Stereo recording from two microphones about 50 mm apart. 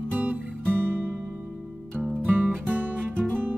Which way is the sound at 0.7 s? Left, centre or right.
Right.